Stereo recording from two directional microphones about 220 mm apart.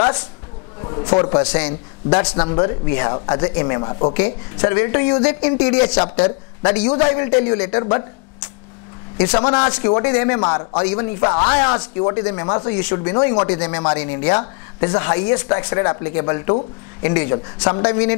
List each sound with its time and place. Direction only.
0.8 s speech: 25° left (ahead or behind)
6.0 s speech: 25° left (ahead or behind)
9.2 s speech: 25° left (ahead or behind)